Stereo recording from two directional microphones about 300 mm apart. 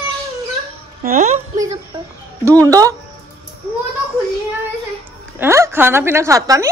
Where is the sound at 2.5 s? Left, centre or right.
Centre.